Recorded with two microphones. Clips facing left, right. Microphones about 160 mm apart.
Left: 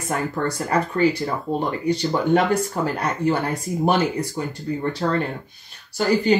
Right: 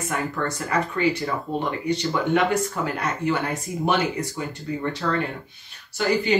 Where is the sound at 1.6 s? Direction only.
35° left (ahead or behind).